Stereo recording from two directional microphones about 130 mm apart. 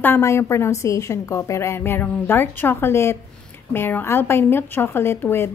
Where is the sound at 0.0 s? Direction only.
20° left (ahead or behind).